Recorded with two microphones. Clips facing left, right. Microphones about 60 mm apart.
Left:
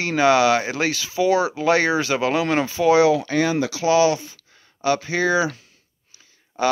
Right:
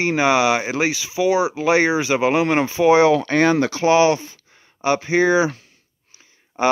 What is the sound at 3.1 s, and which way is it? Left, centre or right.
Speech, right.